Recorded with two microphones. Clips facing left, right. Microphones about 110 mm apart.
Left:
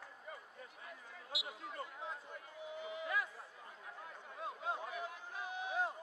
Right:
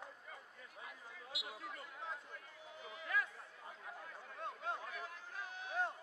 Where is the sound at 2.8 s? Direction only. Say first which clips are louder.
Left 1 dB; 15° left (ahead or behind).